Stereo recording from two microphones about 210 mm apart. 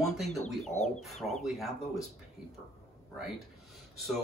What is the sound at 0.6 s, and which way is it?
Chicken, 35° left (ahead or behind).